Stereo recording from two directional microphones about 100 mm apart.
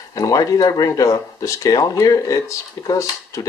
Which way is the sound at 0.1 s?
35° left (ahead or behind).